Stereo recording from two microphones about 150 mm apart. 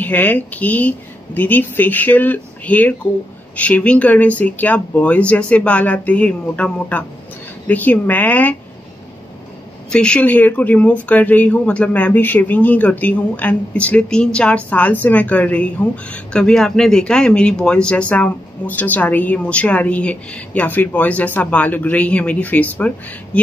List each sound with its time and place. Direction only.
0.0 s speech: 10° left (ahead or behind)
9.8 s speech: 5° left (ahead or behind)